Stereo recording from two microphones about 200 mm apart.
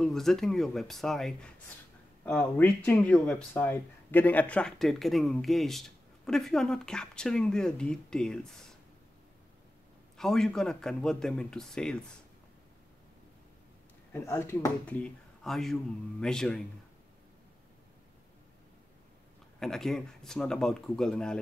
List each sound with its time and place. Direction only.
0.0 s speech: centre (ahead or behind)
10.1 s speech: centre (ahead or behind)
14.1 s speech: 15° left (ahead or behind)
19.6 s speech: centre (ahead or behind)